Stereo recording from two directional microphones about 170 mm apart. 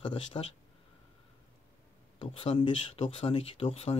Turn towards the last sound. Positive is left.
turn(degrees=35)  # may be behind; listen again after turning